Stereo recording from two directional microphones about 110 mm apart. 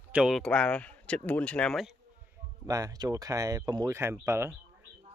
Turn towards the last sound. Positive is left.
turn(degrees=-25)  # may be behind; listen again after turning